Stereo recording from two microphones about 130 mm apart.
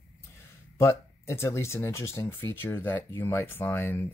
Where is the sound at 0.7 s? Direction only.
20° left (ahead or behind).